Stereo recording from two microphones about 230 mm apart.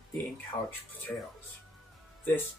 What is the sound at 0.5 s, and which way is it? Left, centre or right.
Speech, centre.